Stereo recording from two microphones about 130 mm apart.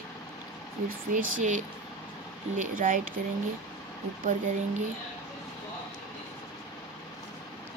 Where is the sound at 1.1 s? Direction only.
85° right.